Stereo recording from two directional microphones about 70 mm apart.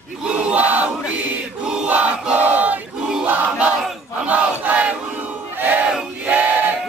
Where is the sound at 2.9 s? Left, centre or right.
Centre.